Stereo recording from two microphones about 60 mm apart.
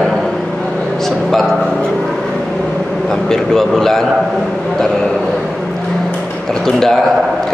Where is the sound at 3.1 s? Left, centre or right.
Centre.